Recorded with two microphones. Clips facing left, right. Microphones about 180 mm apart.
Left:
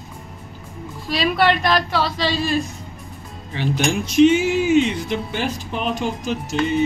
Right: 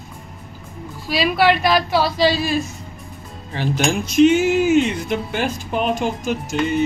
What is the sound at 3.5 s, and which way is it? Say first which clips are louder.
Speech: right 1 dB; 45° right (ahead or behind).